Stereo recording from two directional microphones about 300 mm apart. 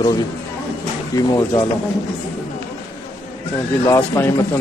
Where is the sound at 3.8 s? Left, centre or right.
Centre.